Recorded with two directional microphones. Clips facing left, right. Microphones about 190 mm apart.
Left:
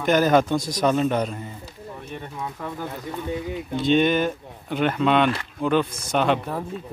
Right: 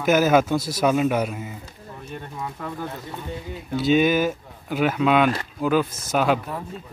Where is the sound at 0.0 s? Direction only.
5° right (ahead or behind).